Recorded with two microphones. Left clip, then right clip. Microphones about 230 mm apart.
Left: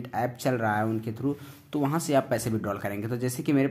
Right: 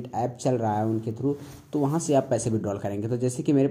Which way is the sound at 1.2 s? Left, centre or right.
Left.